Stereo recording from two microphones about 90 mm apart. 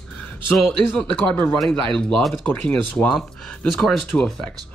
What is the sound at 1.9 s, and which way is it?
Speech, 5° left (ahead or behind).